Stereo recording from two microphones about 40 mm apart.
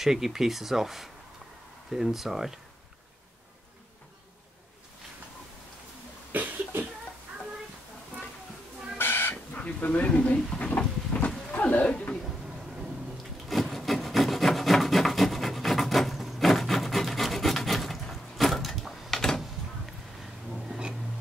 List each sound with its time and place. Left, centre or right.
0.0 s speech: centre
6.3 s cough: right
8.9 s chicken: left
9.3 s speech: left
11.1 s a sound: left
13.2 s rub: centre
16.2 s wood: centre
19.1 s a sound: centre
20.5 s a sound: centre